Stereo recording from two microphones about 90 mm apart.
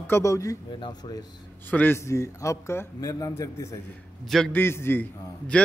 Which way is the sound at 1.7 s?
20° left (ahead or behind).